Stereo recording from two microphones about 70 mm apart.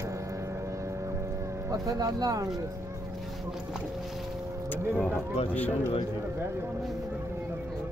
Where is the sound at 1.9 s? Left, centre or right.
Right.